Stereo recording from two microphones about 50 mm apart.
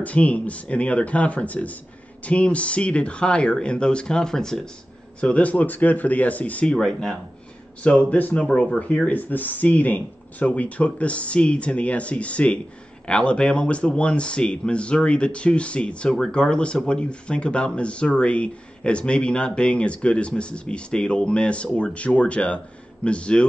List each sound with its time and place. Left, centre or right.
0.0 s speech: left; by 4.6 s centre
5.2 s speech: left
6.7 s speech: centre
7.8 s speech: left